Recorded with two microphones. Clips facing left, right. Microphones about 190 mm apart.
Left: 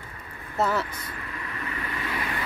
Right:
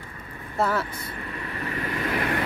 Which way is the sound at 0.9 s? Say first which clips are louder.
Right 3 dB; 30° right (ahead or behind).